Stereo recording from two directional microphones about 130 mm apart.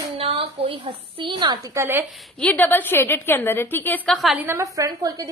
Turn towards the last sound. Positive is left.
turn(degrees=-30)  # may be behind; listen again after turning